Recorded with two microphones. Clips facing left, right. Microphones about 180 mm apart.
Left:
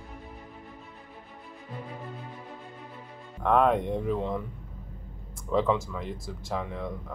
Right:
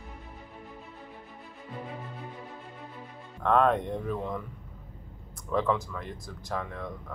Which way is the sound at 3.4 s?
15° left (ahead or behind).